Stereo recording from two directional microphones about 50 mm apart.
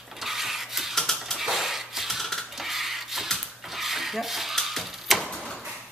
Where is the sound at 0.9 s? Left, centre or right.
Centre.